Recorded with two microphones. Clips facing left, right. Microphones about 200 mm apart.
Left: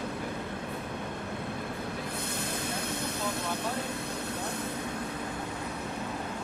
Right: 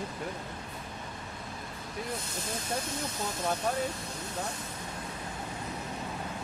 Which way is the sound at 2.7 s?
60° left (ahead or behind).